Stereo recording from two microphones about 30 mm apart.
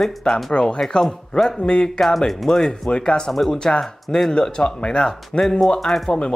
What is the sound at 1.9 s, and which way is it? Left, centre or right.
Speech, centre.